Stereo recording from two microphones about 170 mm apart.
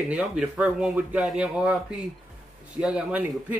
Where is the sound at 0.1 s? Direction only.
5° right (ahead or behind).